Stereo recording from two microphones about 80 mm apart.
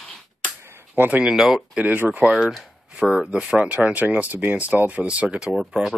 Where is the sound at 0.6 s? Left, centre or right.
Right.